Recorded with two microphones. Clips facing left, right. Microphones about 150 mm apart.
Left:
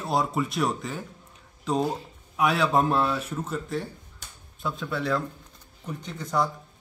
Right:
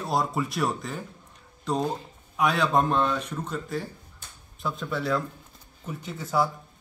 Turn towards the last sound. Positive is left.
turn(degrees=-5)  # may be behind; listen again after turning